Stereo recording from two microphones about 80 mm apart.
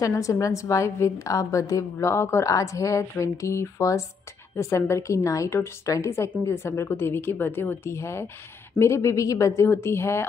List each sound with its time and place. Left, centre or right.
0.0 s a woman's voice: left